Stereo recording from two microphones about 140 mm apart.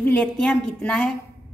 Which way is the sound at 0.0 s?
10° left (ahead or behind).